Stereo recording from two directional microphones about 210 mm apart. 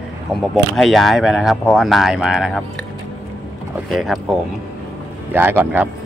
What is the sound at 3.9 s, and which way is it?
Speech, centre (ahead or behind).